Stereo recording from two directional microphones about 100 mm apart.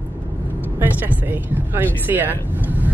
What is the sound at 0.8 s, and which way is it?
Speech, 15° right (ahead or behind).